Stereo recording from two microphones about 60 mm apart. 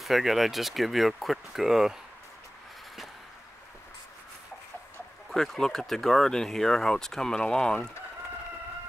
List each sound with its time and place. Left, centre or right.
0.0 s speech: centre
5.3 s speech: centre